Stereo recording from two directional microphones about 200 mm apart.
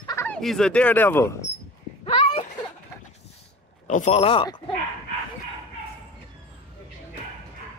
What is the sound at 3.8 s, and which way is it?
Speech, 35° left (ahead or behind).